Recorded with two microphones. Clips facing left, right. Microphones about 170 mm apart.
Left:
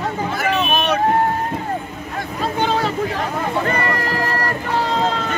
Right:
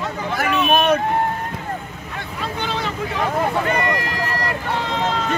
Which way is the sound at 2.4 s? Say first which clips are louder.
Left 6 dB; 40° left (ahead or behind).